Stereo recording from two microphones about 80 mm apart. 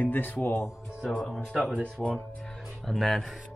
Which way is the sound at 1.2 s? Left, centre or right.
Centre.